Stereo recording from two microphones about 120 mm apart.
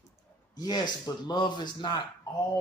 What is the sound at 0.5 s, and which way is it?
Speech, 35° left (ahead or behind).